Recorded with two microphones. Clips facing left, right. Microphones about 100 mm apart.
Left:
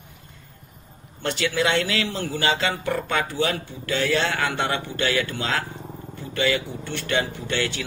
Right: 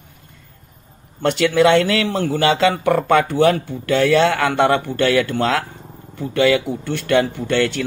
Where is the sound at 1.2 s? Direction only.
55° right (ahead or behind).